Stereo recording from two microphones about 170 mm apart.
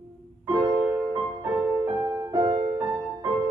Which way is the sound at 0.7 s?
20° right (ahead or behind).